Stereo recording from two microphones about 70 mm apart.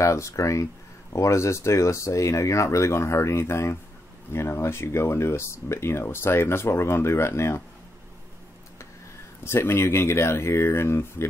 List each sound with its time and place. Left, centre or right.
0.0 s speech: left
9.4 s speech: left